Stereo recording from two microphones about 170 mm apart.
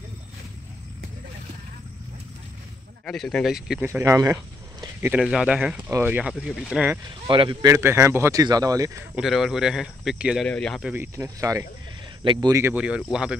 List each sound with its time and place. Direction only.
3.1 s speech: 5° left (ahead or behind)
3.8 s speech: 15° right (ahead or behind)
5.0 s speech: 5° right (ahead or behind)
7.1 s speech: 30° right (ahead or behind)
7.7 s speech: 15° right (ahead or behind)
9.1 s speech: centre (ahead or behind)
10.9 s speech: 15° right (ahead or behind)
12.7 s speech: 5° right (ahead or behind)